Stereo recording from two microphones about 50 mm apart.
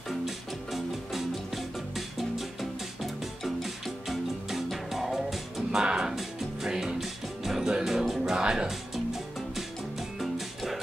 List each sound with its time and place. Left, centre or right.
0.7 s music: centre
10.3 s music: centre